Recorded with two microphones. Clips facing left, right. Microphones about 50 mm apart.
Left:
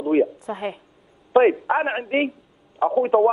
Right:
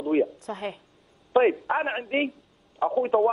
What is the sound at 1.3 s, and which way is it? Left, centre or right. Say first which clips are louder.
A man's voice: left 5 dB; centre.